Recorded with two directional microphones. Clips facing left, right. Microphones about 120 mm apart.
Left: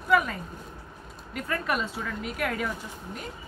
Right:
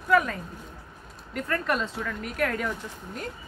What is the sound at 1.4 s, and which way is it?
Speech, 5° left (ahead or behind).